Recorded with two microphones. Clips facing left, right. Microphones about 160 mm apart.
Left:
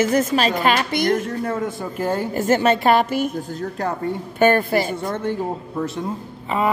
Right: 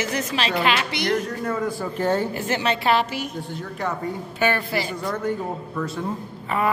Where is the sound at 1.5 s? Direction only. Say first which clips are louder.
Left 1 dB; 25° left (ahead or behind).